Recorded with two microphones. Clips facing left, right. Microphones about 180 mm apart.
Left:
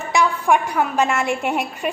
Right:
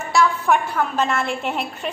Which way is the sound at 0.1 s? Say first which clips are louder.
Even; 15° left (ahead or behind).